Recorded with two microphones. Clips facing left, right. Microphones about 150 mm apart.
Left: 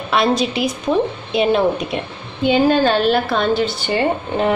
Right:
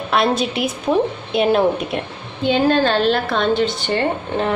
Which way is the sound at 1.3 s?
Centre (ahead or behind).